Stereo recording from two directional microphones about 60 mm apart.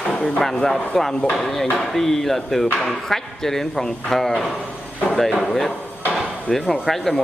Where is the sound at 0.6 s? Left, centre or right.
Centre.